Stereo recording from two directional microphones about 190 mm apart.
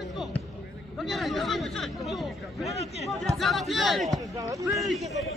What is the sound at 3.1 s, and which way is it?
Speech, centre (ahead or behind).